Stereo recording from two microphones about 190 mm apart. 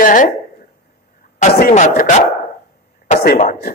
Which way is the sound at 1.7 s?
40° left (ahead or behind).